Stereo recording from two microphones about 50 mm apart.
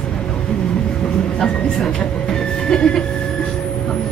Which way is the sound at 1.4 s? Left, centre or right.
Centre.